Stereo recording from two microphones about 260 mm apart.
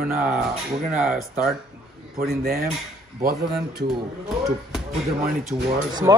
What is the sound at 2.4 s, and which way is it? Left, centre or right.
Speech, right.